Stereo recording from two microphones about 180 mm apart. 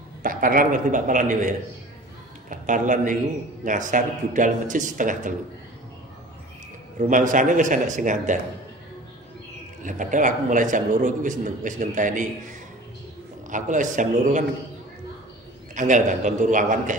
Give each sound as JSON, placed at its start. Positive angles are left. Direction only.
{"t": 0.2, "sound": "a man's voice", "side_deg": -50}
{"t": 2.5, "sound": "a man's voice", "side_deg": -45}
{"t": 7.0, "sound": "a man's voice", "side_deg": -45}
{"t": 9.8, "sound": "a man's voice", "side_deg": -45}
{"t": 13.5, "sound": "a man's voice", "side_deg": -45}
{"t": 15.7, "sound": "a man's voice", "side_deg": -45}